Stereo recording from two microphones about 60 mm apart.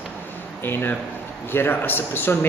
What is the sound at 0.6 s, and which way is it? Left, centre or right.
A man's voice, left.